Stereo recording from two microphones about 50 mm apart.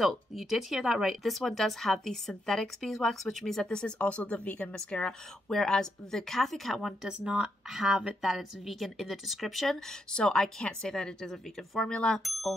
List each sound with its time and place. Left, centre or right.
0.0 s a woman's voice: centre
1.0 s a woman's voice: centre
3.6 s a woman's voice: centre
7.1 s a woman's voice: centre
10.1 s a woman's voice: centre
12.2 s a woman's voice: centre